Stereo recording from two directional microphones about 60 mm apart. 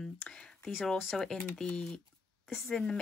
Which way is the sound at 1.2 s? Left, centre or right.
Centre.